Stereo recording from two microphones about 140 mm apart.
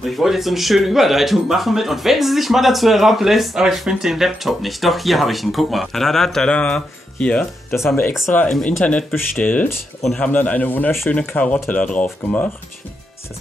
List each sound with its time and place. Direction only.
0.0 s speech: centre (ahead or behind)